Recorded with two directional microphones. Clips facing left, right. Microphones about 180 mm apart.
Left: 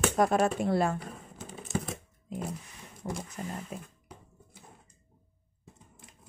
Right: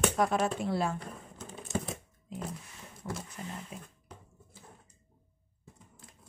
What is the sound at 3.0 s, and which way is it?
Speech, 40° left (ahead or behind).